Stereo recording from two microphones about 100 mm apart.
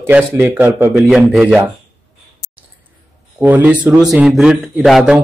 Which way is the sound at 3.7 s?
5° right (ahead or behind).